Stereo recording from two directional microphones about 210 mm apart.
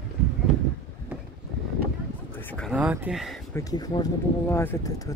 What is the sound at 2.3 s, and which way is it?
Speech, 5° left (ahead or behind).